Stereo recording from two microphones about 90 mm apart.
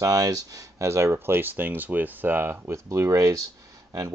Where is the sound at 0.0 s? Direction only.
40° right (ahead or behind).